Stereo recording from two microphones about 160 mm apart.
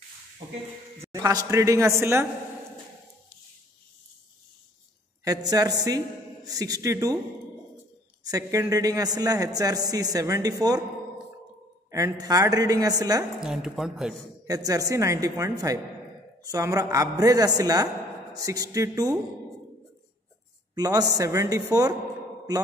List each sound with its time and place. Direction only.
0.4 s a man's voice: 25° right (ahead or behind)
5.2 s a man's voice: 25° right (ahead or behind)
8.3 s a man's voice: 20° right (ahead or behind)
11.9 s a man's voice: 20° right (ahead or behind)
13.4 s speech: 5° right (ahead or behind)
14.4 s a man's voice: 20° right (ahead or behind)
20.7 s a man's voice: 25° right (ahead or behind)